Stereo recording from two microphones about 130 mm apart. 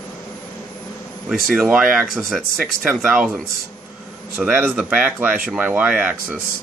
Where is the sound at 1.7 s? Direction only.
10° right (ahead or behind).